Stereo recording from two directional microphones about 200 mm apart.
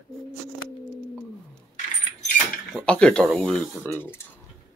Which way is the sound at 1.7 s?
40° left (ahead or behind).